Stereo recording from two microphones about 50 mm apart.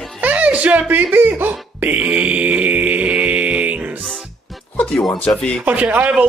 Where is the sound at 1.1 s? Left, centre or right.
Right.